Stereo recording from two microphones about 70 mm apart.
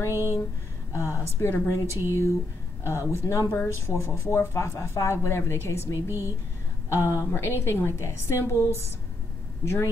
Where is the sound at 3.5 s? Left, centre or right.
Left.